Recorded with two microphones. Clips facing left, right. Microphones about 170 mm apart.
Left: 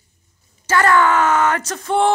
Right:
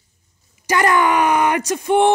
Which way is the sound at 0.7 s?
15° right (ahead or behind).